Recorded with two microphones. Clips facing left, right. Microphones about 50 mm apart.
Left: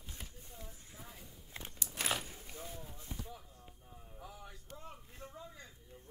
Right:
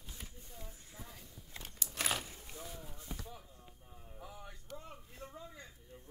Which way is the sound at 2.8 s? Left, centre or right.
Centre.